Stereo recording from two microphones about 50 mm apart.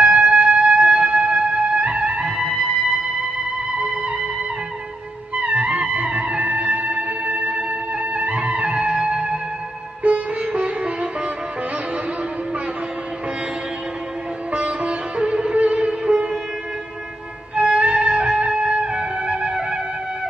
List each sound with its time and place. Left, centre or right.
0.0 s music: centre
5.3 s music: right
14.5 s sitar: right
17.6 s music: right